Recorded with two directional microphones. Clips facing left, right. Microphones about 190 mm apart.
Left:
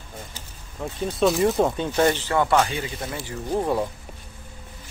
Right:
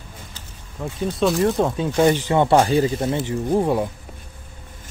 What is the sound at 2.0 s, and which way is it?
Speech, 10° right (ahead or behind).